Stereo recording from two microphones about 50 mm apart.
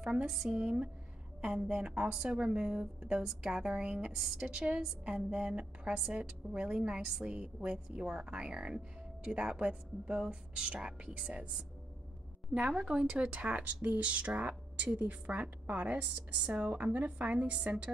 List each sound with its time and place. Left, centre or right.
0.0 s a woman's voice: centre
4.1 s a woman's voice: centre
4.5 s a woman's voice: centre
7.3 s a woman's voice: right
13.5 s speech: right